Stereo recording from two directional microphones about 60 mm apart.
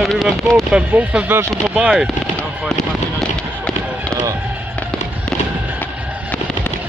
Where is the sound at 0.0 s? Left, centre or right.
Centre.